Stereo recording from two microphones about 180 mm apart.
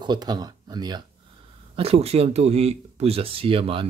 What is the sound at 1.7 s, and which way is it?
Speech, 35° right (ahead or behind).